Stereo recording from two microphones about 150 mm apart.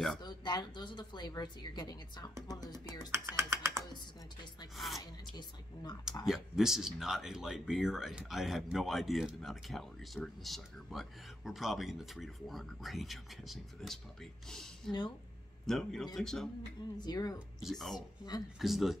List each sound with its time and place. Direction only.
0.2 s a woman's voice: 30° left (ahead or behind)
3.1 s speech: 20° right (ahead or behind)
4.7 s speech: centre (ahead or behind)
5.3 s a woman's voice: 30° left (ahead or behind)
6.2 s speech: 5° right (ahead or behind)
14.9 s speech: 30° left (ahead or behind)
15.6 s speech: 5° left (ahead or behind)
17.0 s a woman's voice: 25° left (ahead or behind)
17.6 s speech: centre (ahead or behind)
17.9 s a woman's voice: 25° left (ahead or behind)
18.6 s speech: centre (ahead or behind)